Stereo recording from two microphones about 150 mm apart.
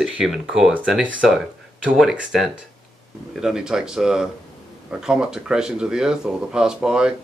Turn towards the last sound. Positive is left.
turn(degrees=-5)  # may be behind; listen again after turning